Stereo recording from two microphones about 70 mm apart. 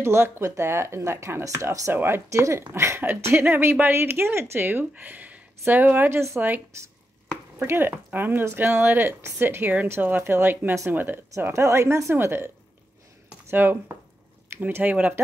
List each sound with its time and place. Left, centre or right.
0.0 s speech: right
1.4 s speech: right
2.0 s speech: right
3.4 s speech: right
6.0 s speech: right
7.6 s speech: right
11.5 s speech: right